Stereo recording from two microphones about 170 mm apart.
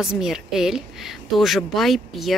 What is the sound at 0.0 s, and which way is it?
Speech, 5° right (ahead or behind).